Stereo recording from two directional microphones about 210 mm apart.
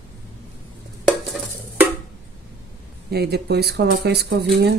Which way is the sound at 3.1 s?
50° right (ahead or behind).